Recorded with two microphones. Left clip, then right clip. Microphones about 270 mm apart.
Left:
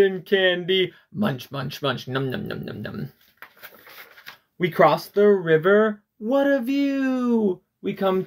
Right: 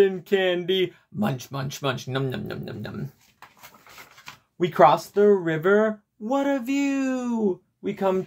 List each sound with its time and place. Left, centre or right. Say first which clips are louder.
0.0 s speech: left 2 dB; centre
4.6 s speech: right 1 dB; centre